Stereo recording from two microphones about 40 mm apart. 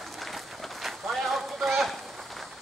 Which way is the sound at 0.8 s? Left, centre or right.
Centre.